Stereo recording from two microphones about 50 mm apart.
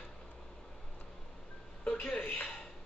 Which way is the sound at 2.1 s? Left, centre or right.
Left.